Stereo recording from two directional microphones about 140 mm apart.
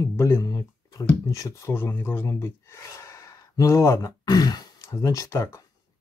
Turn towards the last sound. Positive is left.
turn(degrees=20)  # may be behind; listen again after turning